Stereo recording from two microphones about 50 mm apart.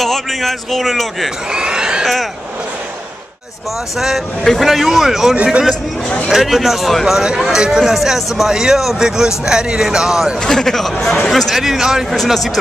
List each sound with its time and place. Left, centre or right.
0.0 s speech: centre
1.5 s speech: centre
4.5 s speech: centre
5.3 s speech: right
6.0 s speech: centre
6.3 s speech: centre
10.4 s a man's voice: centre
11.6 s speech: centre